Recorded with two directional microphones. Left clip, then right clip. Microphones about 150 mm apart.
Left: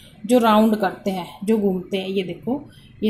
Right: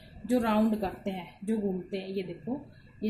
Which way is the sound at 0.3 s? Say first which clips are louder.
Left 12 dB; 20° left (ahead or behind).